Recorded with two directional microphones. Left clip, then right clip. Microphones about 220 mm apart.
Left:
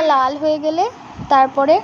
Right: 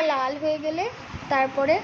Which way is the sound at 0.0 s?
20° left (ahead or behind).